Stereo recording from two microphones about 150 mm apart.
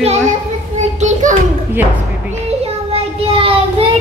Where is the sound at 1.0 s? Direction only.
55° right (ahead or behind).